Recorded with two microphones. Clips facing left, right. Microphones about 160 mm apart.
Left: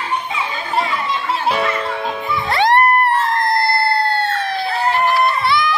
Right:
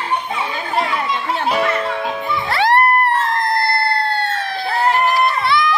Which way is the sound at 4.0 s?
5° left (ahead or behind).